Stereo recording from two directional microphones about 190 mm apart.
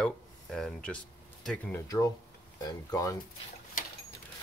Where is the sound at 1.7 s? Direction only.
15° left (ahead or behind).